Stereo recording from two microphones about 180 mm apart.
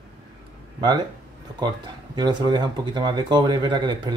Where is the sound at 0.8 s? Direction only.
25° right (ahead or behind).